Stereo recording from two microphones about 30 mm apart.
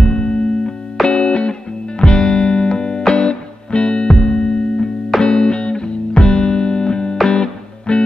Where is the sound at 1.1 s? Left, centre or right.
Left.